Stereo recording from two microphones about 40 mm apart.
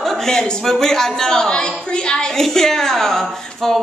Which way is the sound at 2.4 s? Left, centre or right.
Centre.